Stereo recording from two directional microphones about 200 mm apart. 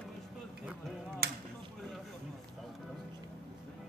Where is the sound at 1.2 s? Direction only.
55° right (ahead or behind).